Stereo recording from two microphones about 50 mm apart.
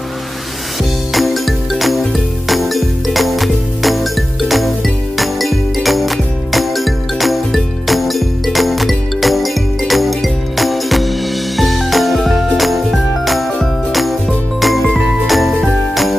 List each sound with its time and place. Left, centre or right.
1.1 s music: centre
14.6 s jingle: centre